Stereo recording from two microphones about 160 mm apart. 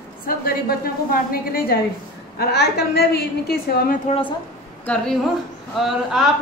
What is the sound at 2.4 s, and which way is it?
A woman's voice, 90° left.